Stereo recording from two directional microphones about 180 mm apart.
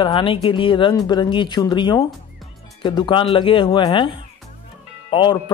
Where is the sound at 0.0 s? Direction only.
30° left (ahead or behind).